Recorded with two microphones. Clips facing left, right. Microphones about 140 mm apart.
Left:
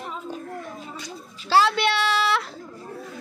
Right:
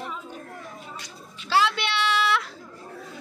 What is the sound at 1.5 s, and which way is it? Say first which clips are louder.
Speech: left 4 dB; 40° left (ahead or behind).